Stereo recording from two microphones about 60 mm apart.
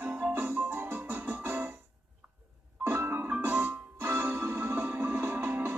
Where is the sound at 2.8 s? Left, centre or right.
Right.